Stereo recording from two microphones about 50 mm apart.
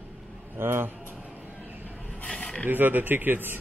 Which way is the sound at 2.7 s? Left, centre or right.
Right.